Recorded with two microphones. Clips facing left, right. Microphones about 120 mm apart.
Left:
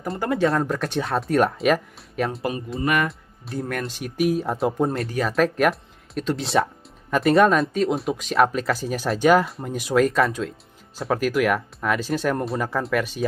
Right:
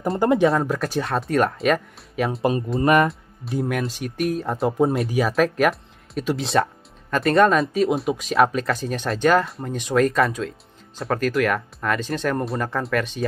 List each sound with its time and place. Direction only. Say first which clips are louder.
0.2 s speech: right 4 dB; 20° right (ahead or behind)
0.5 s speech: right 2 dB; centre (ahead or behind)
2.8 s speech: right 5 dB; 30° right (ahead or behind)
3.1 s speech: right 5 dB; centre (ahead or behind)